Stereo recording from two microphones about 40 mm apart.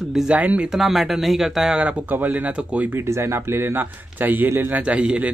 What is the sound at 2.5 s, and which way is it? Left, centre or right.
Speech, right.